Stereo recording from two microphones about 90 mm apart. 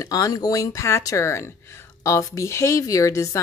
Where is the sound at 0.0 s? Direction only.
40° left (ahead or behind).